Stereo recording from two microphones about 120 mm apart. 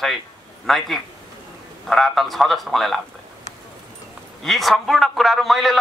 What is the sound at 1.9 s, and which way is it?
Speech, centre (ahead or behind).